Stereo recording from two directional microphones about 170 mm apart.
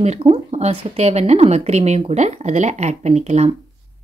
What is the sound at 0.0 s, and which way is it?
Speech, 40° right (ahead or behind).